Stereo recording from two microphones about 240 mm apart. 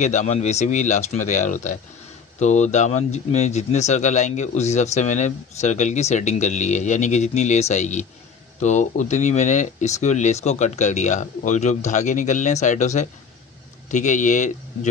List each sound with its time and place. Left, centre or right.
0.0 s speech: left